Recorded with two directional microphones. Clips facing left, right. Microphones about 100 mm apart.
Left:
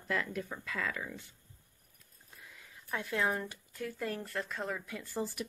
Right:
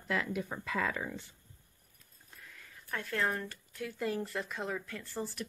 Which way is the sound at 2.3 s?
15° left (ahead or behind).